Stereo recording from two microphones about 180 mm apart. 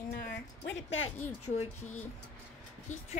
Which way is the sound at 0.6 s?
90° left.